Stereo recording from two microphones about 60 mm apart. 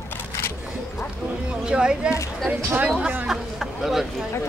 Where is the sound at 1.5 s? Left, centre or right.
Centre.